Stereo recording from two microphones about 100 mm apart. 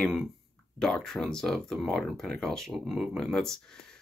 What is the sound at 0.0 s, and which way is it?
Speech, centre (ahead or behind).